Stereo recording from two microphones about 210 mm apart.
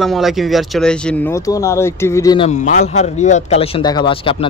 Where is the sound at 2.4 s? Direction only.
35° left (ahead or behind).